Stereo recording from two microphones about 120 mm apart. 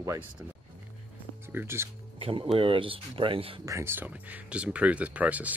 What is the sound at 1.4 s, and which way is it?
Speech, 20° right (ahead or behind).